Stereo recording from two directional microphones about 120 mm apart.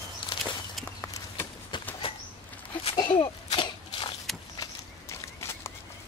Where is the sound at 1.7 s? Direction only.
40° left (ahead or behind).